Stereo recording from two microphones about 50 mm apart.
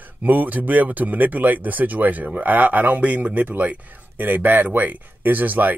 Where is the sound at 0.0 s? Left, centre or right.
Right.